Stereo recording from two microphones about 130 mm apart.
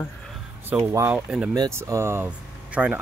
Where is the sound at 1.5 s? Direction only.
25° right (ahead or behind).